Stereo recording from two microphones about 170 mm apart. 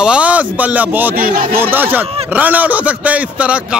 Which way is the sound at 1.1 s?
55° right (ahead or behind).